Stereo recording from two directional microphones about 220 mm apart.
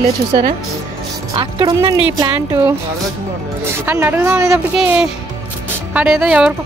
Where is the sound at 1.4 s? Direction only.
20° right (ahead or behind).